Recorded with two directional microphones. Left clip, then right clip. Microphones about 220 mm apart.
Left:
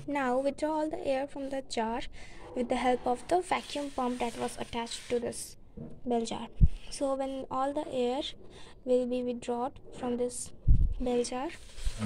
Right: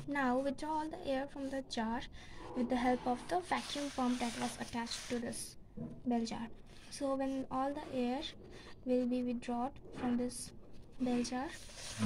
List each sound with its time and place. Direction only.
0.1 s a woman's voice: 30° left (ahead or behind)